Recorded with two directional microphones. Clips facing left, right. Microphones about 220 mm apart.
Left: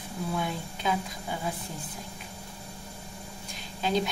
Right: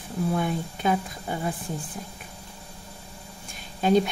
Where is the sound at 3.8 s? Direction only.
50° right (ahead or behind).